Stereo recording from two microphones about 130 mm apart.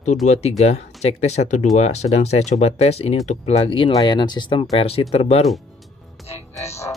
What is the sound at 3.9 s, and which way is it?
Speech, 35° left (ahead or behind).